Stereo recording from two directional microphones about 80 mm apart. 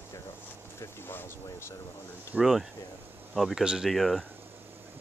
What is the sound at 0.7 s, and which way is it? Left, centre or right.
Speech, left.